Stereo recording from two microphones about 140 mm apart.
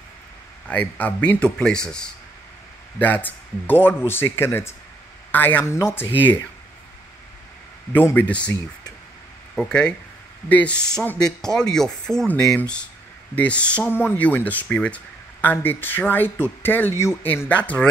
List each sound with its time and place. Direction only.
0.7 s speech: 10° left (ahead or behind)
3.0 s speech: 15° left (ahead or behind)
7.9 s speech: 15° left (ahead or behind)
9.6 s speech: 5° left (ahead or behind)